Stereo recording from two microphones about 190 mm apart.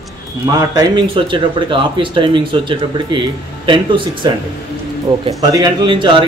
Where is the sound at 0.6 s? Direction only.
20° right (ahead or behind).